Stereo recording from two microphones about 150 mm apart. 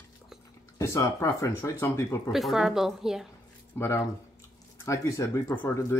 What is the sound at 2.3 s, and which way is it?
Speech, centre (ahead or behind).